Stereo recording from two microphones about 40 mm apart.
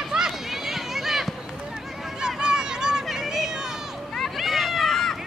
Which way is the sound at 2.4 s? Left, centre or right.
Centre.